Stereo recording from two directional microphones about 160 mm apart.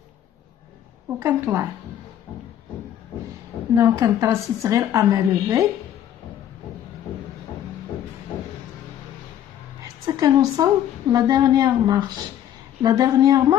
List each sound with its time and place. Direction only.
1.2 s speech: 15° right (ahead or behind)
3.7 s a woman's voice: 20° right (ahead or behind)
10.0 s a woman's voice: 25° right (ahead or behind)